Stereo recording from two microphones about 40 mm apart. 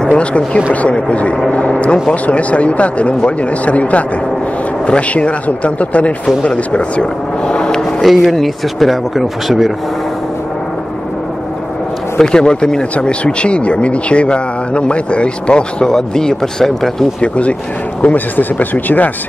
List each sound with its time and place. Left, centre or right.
0.1 s speech: left
8.0 s speech: centre
12.2 s speech: centre
15.9 s speech: centre
17.2 s speech: left
18.0 s speech: left